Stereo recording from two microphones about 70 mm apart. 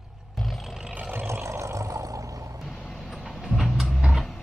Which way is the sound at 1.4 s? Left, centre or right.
Right.